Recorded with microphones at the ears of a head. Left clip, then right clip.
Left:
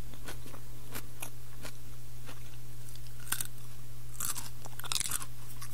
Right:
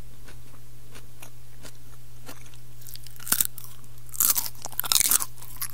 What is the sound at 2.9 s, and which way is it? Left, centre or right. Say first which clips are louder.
Crunch: right 10 dB; right.